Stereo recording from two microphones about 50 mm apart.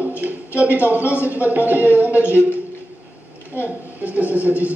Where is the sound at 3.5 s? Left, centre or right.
Right.